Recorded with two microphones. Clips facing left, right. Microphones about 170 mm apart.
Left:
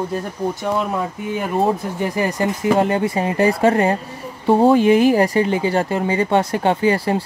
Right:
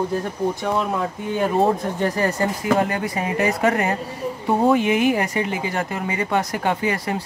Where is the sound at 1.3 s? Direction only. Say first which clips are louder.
Even; 5° left (ahead or behind).